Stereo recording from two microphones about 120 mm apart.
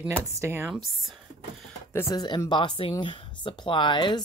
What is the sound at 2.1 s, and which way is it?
Speech, 35° left (ahead or behind).